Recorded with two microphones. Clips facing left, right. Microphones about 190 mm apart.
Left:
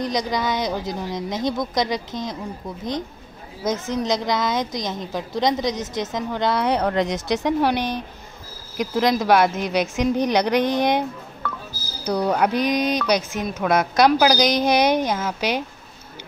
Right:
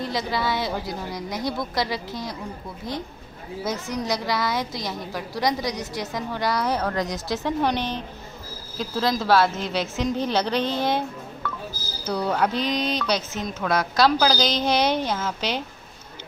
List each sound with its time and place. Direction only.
0.0 s a woman's voice: 20° left (ahead or behind)